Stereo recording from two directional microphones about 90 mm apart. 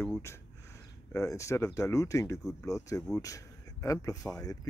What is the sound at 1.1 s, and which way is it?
Speech, 35° left (ahead or behind).